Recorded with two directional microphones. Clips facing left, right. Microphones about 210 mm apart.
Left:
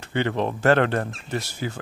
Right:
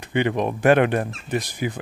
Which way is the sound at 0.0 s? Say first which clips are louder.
Right 2 dB; 15° right (ahead or behind).